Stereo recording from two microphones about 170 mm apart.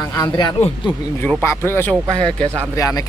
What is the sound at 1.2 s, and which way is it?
Speech, 10° left (ahead or behind).